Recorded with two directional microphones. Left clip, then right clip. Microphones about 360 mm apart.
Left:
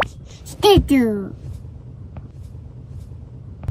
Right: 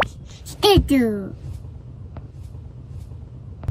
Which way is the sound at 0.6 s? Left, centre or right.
Centre.